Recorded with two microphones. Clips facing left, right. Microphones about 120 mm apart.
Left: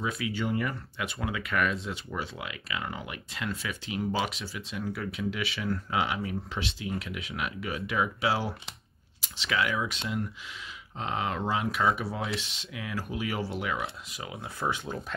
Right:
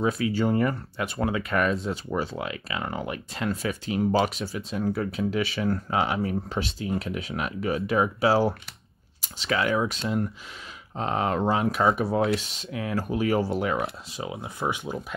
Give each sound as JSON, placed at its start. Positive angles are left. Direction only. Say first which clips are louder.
{"t": 0.0, "sound": "speech", "louder": "right 7 dB", "side_deg": -40}
{"t": 11.0, "sound": "speech", "louder": "right 6 dB", "side_deg": -45}
{"t": 14.1, "sound": "speech", "louder": "right 5 dB", "side_deg": -25}